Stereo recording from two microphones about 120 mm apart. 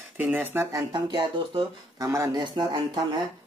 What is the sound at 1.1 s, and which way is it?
Speech, 45° right (ahead or behind).